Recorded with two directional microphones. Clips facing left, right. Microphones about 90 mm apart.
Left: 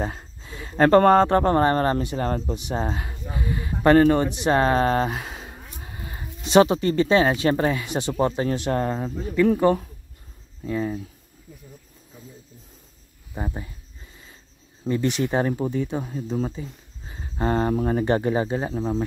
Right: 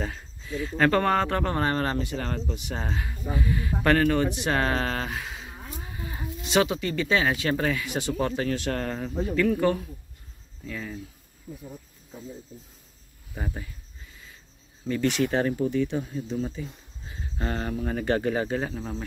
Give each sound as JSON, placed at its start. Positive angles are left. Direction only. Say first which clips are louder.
{"t": 0.0, "sound": "speech", "louder": "left 4 dB", "side_deg": 35}
{"t": 2.5, "sound": "speech", "louder": "left 6 dB", "side_deg": 25}
{"t": 9.5, "sound": "speech", "louder": "left 5 dB", "side_deg": 35}
{"t": 13.3, "sound": "speech", "louder": "left 4 dB", "side_deg": 20}
{"t": 14.9, "sound": "speech", "louder": "left 2 dB", "side_deg": 20}
{"t": 15.5, "sound": "speech", "louder": "even", "side_deg": 35}
{"t": 17.1, "sound": "a sound", "louder": "left 8 dB", "side_deg": 30}
{"t": 17.8, "sound": "speech", "louder": "left 4 dB", "side_deg": 25}